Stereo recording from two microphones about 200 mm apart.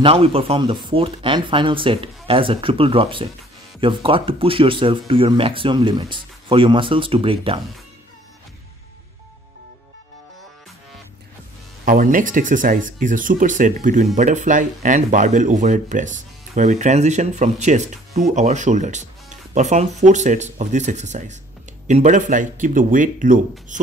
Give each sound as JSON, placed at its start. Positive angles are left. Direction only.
{"t": 0.0, "sound": "speech", "side_deg": -30}
{"t": 11.8, "sound": "speech", "side_deg": -45}